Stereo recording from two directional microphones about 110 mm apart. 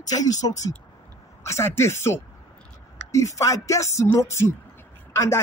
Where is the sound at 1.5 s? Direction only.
25° left (ahead or behind).